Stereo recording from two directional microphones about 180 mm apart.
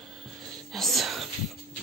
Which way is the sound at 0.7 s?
Centre (ahead or behind).